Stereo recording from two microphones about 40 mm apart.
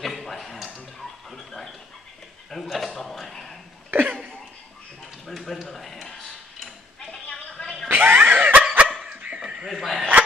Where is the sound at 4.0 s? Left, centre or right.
Right.